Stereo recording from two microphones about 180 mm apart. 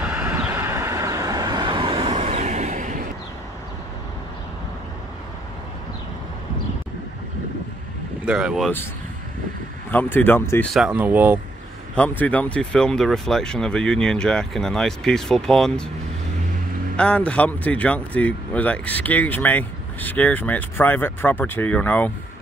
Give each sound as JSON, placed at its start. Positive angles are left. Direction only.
{"t": 0.0, "sound": "vehicle", "side_deg": -5}
{"t": 8.3, "sound": "speech", "side_deg": -5}
{"t": 9.8, "sound": "speech", "side_deg": 10}
{"t": 10.7, "sound": "speech", "side_deg": -5}
{"t": 11.9, "sound": "speech", "side_deg": 10}
{"t": 16.9, "sound": "speech", "side_deg": 5}